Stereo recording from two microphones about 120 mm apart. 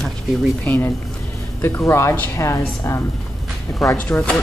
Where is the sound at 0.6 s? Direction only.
15° left (ahead or behind).